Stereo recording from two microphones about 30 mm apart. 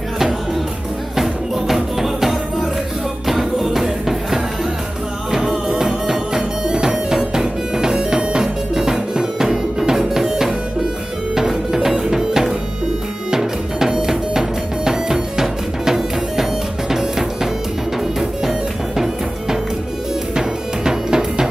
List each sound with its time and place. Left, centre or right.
1.1 s music: centre
18.4 s music: centre
20.3 s music: right